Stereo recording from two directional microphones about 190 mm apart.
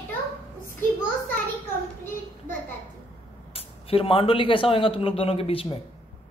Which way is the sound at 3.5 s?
30° left (ahead or behind).